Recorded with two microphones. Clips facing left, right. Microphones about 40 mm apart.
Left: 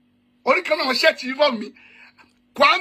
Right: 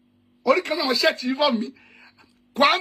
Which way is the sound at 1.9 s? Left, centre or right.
Left.